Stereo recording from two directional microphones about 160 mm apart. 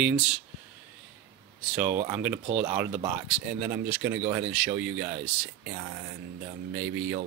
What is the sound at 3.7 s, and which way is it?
Speech, 80° right.